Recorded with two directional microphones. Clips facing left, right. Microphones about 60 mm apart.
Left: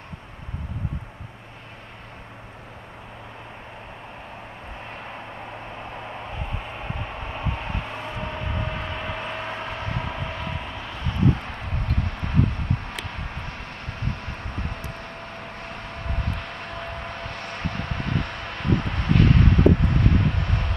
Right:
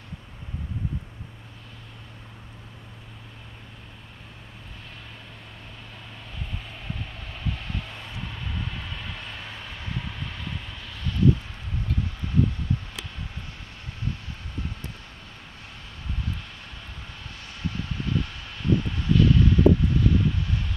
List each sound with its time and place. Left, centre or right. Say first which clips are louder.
5.0 s vehicle: left 9 dB; left
10.5 s vehicle: left 6 dB; left
11.2 s a sound: right 2 dB; left